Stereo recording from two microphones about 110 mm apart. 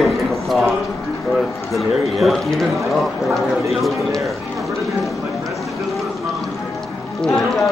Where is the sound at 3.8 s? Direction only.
Centre (ahead or behind).